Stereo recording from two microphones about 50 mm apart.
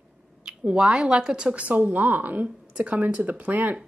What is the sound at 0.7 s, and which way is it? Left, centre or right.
A woman's voice, centre.